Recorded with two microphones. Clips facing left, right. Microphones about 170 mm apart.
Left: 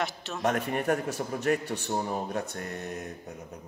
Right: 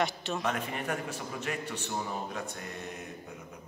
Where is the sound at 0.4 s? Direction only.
45° left (ahead or behind).